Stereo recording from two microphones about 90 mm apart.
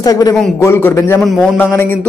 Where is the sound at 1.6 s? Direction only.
25° left (ahead or behind).